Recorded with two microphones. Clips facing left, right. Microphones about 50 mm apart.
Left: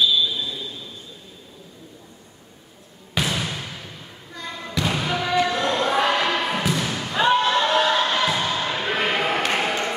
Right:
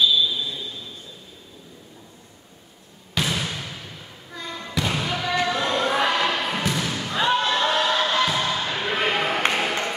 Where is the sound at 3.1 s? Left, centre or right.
Centre.